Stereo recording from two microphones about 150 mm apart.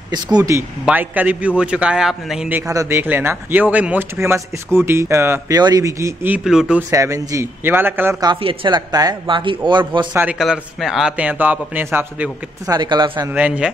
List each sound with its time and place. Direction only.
0.1 s speech: 25° right (ahead or behind)
0.8 s a man's voice: 10° right (ahead or behind)
2.7 s a man's voice: 20° right (ahead or behind)
6.9 s a man's voice: 20° right (ahead or behind)
8.2 s speech: 35° right (ahead or behind)
10.1 s a man's voice: 5° right (ahead or behind)
12.7 s speech: 30° right (ahead or behind)
13.3 s a man's voice: 10° right (ahead or behind)